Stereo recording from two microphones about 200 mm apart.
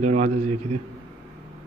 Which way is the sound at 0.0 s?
35° right (ahead or behind).